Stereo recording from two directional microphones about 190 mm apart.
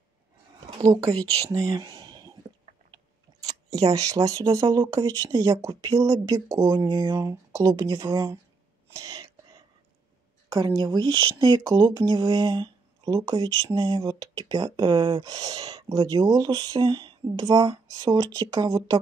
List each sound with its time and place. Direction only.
0.7 s speech: 20° right (ahead or behind)
3.4 s speech: 20° right (ahead or behind)
8.9 s a sound: 20° right (ahead or behind)
10.5 s speech: 20° right (ahead or behind)